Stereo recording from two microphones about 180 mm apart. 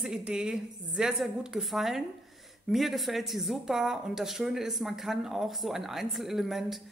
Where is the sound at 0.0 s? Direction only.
5° right (ahead or behind).